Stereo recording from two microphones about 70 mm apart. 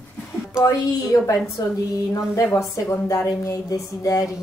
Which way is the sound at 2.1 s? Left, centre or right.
Left.